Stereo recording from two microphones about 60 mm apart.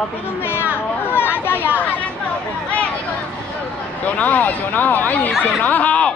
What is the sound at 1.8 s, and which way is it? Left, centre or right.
Speech, left.